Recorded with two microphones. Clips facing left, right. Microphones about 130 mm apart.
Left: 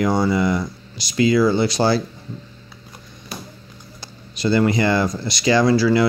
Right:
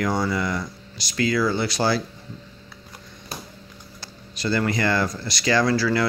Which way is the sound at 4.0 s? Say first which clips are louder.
Left 5 dB; 20° left (ahead or behind).